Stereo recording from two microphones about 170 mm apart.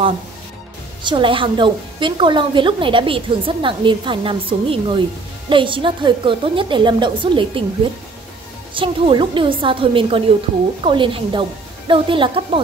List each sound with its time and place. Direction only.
1.0 s a woman's voice: 30° right (ahead or behind)
8.7 s a woman's voice: 30° right (ahead or behind)